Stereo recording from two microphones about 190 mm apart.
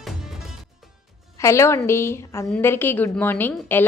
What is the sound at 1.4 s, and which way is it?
A woman's voice, 15° left (ahead or behind).